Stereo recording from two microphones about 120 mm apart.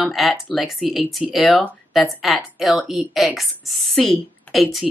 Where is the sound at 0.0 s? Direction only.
Centre (ahead or behind).